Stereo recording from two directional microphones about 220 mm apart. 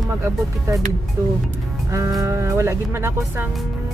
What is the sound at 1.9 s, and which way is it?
Music, 15° right (ahead or behind).